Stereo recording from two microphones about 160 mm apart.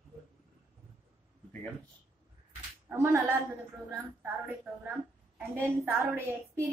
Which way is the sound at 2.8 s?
15° right (ahead or behind).